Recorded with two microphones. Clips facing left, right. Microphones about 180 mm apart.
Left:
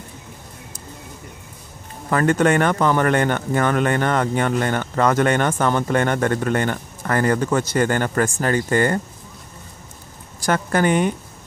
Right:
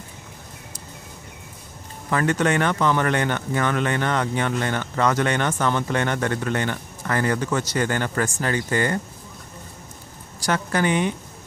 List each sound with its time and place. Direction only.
2.0 s speech: 50° left (ahead or behind)
10.4 s speech: 50° left (ahead or behind)